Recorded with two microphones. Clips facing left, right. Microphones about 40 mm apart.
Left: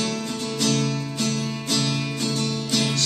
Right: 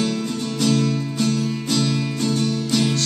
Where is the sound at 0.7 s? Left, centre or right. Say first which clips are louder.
Right 5 dB; centre.